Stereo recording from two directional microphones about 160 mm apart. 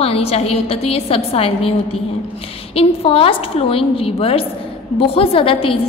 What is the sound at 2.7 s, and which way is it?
A woman's voice, 35° left (ahead or behind).